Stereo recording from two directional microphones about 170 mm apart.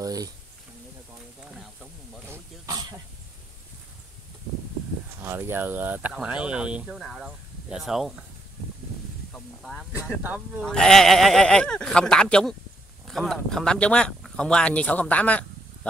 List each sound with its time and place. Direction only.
0.0 s a sound: 20° right (ahead or behind)
2.2 s throat clearing: 15° right (ahead or behind)
5.2 s speech: 15° right (ahead or behind)
9.3 s snake: 5° left (ahead or behind)
10.6 s speech: 5° left (ahead or behind)